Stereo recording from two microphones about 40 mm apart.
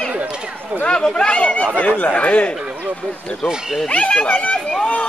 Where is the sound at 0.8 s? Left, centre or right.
Left.